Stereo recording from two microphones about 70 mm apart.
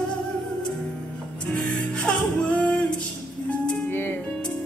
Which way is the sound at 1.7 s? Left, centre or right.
Centre.